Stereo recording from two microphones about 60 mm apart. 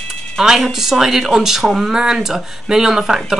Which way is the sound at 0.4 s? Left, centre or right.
Centre.